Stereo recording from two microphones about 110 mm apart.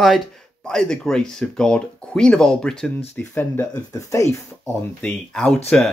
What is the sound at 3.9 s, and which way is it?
Speech, 30° left (ahead or behind).